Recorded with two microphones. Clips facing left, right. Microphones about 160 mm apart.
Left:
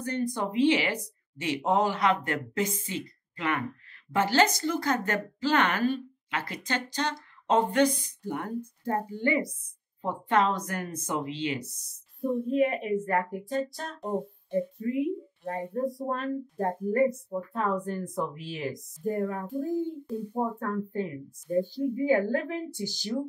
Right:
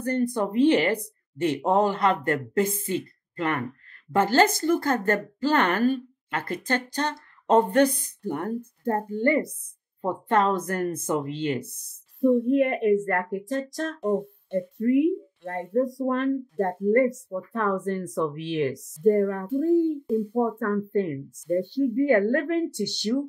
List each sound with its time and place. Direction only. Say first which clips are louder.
0.0 s a woman's voice: right 5 dB; 55° right (ahead or behind)
12.2 s a woman's voice: right 6 dB; 75° right (ahead or behind)